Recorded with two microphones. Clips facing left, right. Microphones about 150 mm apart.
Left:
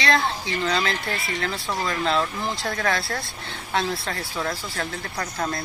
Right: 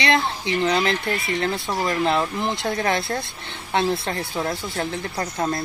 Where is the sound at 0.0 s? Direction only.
20° right (ahead or behind).